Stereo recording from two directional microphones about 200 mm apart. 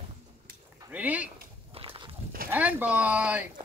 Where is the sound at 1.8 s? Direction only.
25° right (ahead or behind).